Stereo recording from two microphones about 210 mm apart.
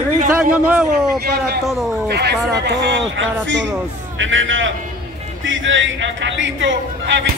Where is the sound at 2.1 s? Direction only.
50° right (ahead or behind).